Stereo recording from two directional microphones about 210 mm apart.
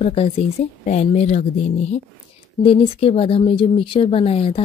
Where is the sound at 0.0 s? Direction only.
30° left (ahead or behind).